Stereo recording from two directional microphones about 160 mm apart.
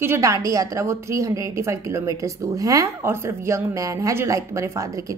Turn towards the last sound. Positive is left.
turn(degrees=-20)  # may be behind; listen again after turning